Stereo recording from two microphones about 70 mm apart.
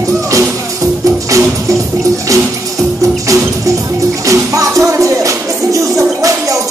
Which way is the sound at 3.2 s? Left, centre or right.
Right.